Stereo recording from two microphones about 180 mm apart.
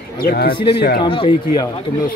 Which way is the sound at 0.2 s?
60° left (ahead or behind).